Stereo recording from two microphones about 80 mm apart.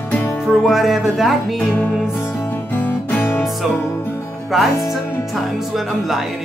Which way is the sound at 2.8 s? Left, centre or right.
Left.